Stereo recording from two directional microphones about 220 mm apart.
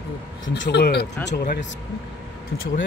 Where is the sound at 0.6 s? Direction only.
50° left (ahead or behind).